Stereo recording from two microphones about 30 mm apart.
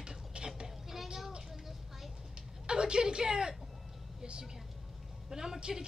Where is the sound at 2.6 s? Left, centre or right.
Right.